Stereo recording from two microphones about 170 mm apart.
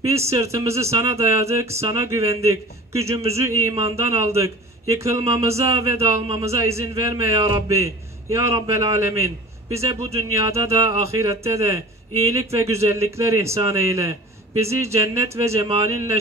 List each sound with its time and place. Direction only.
0.1 s a man's voice: 15° right (ahead or behind)